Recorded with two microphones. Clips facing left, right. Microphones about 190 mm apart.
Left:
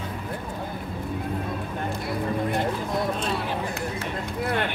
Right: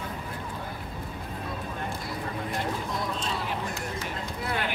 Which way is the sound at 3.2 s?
60° left (ahead or behind).